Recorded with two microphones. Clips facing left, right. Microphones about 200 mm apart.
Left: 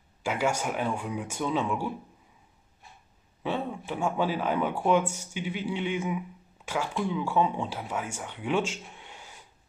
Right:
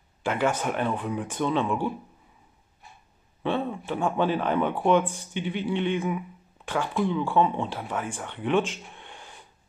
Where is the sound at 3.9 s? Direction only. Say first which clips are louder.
Right 2 dB; 55° right (ahead or behind).